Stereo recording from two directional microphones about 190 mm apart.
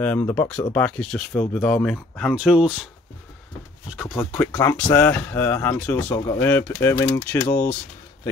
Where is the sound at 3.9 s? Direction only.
Centre (ahead or behind).